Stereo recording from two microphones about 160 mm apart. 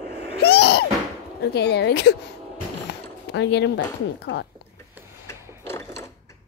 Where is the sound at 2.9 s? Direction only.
90° left.